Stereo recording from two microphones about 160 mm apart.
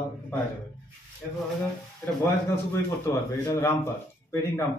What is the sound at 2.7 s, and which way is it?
Speech, 20° left (ahead or behind).